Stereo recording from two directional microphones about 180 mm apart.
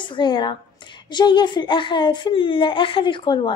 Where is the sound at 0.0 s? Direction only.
25° left (ahead or behind).